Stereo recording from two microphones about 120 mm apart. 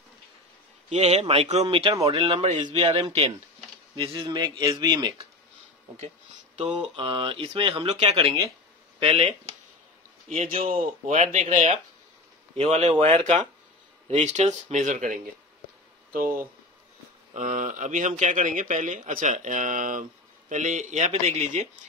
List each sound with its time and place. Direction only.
0.8 s speech: 70° right (ahead or behind); by 2.4 s 45° right (ahead or behind)
2.4 s speech: 80° right
2.8 s speech: 50° right (ahead or behind)
5.9 s a sound: 65° right (ahead or behind)
7.0 s speech: 45° right (ahead or behind); by 11.8 s 85° right
12.5 s speech: 65° right (ahead or behind)
13.0 s speech: 75° right (ahead or behind)
17.3 s a man's voice: 90° right; by 21.6 s 75° right (ahead or behind)